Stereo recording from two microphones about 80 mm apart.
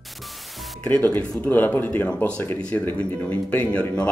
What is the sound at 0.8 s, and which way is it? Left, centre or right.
Speech, left.